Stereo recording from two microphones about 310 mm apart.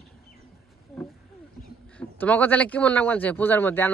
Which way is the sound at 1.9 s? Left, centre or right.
Centre.